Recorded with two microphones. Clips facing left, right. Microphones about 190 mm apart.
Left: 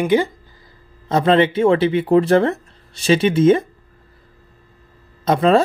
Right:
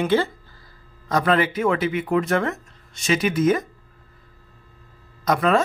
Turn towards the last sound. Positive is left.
turn(degrees=25)  # may be behind; listen again after turning